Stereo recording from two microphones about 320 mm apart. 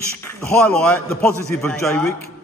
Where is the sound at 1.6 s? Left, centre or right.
Centre.